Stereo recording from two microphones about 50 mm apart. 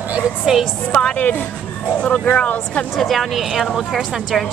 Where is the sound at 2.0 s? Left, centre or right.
Left.